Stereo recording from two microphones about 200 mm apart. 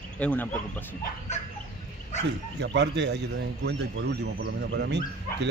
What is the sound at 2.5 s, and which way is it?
Speech, 60° right (ahead or behind).